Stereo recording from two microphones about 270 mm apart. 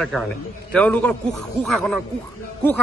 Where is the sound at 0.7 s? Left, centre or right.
Centre.